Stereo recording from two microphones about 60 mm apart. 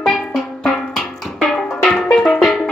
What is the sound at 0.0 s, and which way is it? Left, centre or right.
Music, centre.